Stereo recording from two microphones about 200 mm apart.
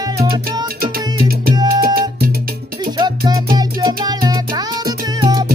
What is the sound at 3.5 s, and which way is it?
Music, 20° right (ahead or behind).